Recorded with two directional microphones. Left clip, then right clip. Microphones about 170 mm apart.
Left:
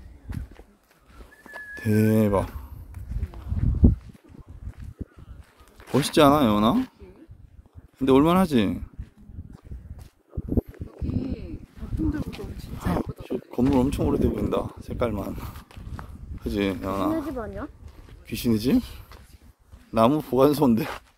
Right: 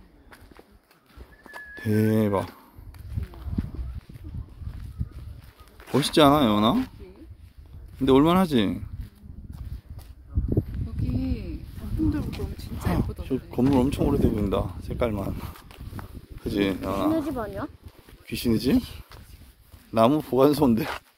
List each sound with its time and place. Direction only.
1.5 s speech: 10° left (ahead or behind)
3.3 s a sound: 5° left (ahead or behind)
5.9 s speech: centre (ahead or behind)
8.0 s speech: centre (ahead or behind)
11.1 s bird: 90° right
12.3 s a sound: centre (ahead or behind)
16.0 s speech: centre (ahead or behind)
17.3 s speech: 60° right (ahead or behind)
18.2 s speech: centre (ahead or behind)
19.9 s speech: centre (ahead or behind)